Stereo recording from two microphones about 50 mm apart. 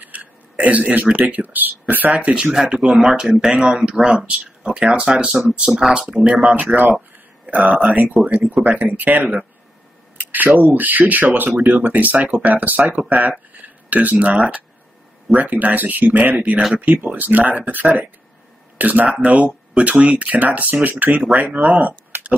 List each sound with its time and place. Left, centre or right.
0.0 s a sound: right
1.3 s speech: right
2.1 s speech: right
2.5 s speech: centre
6.5 s speech: right
13.5 s a sound: right
15.3 s speech: right